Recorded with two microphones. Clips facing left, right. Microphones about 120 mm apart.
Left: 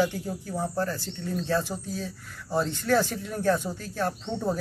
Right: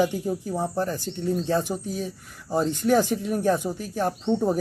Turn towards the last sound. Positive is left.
turn(degrees=-15)  # may be behind; listen again after turning